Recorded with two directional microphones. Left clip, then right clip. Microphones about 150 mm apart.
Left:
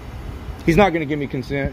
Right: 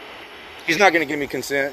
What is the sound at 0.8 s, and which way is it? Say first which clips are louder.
Speech: right 2 dB; 25° right (ahead or behind).